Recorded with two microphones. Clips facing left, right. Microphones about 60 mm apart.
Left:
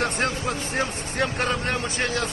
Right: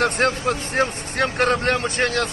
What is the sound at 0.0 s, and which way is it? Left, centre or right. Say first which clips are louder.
Speech: right 5 dB; right.